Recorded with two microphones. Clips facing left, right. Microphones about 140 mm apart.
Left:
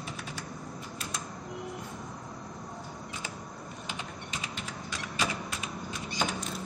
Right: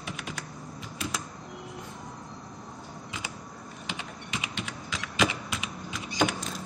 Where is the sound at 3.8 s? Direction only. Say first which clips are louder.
Right 3 dB; 75° right (ahead or behind).